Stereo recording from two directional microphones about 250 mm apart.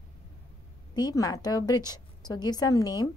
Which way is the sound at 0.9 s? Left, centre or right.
Centre.